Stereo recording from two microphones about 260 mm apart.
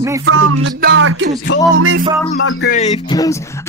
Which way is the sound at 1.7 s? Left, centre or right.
Right.